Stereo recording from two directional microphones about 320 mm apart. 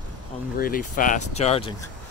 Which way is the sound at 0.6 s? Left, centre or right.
Left.